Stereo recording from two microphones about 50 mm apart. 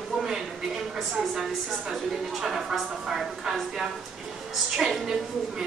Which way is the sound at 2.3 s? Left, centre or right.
Centre.